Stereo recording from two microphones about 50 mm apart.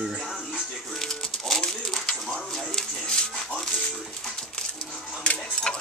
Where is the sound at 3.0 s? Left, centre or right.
Centre.